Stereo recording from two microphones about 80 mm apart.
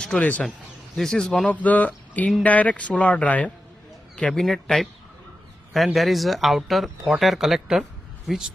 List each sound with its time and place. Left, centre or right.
0.0 s speech: centre
1.5 s speech: centre
4.2 s speech: centre
5.9 s speech: centre